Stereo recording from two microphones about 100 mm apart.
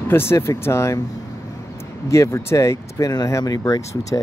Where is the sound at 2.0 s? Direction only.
30° left (ahead or behind).